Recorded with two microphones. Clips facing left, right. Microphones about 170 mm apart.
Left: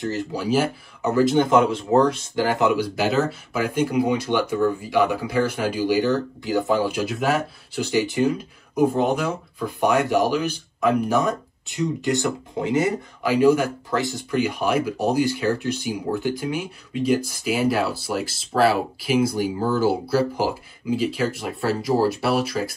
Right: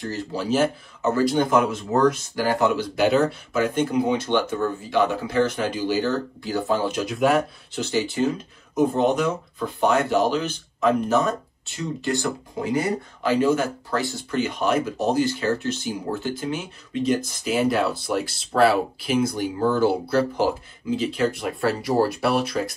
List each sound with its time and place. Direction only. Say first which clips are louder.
0.0 s speech: left 2 dB; 15° left (ahead or behind); by 2.4 s 30° left (ahead or behind)
2.4 s speech: left 1 dB; 20° left (ahead or behind)
3.0 s speech: right 2 dB; centre (ahead or behind)
7.8 s speech: left 2 dB; 15° left (ahead or behind)